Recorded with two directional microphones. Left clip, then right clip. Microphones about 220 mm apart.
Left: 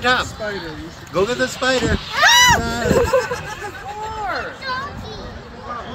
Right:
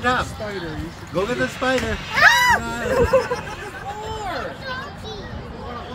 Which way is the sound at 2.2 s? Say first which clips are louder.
Left 2 dB; 50° left (ahead or behind).